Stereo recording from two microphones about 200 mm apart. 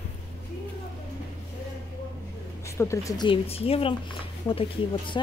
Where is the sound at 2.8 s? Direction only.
15° left (ahead or behind).